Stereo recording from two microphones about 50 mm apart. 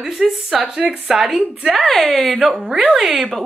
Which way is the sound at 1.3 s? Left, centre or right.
Centre.